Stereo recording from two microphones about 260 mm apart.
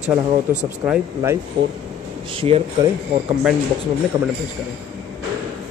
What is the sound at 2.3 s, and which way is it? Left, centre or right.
Speech, right.